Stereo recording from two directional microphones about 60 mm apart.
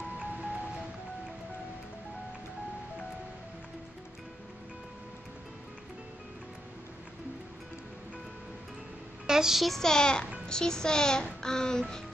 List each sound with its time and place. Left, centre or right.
0.2 s music: right
9.3 s a child's voice: centre